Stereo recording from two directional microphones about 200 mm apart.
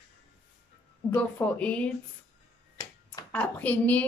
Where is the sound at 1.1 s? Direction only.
5° left (ahead or behind).